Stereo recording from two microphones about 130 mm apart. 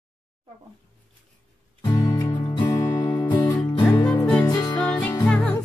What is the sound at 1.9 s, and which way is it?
Music, 25° left (ahead or behind).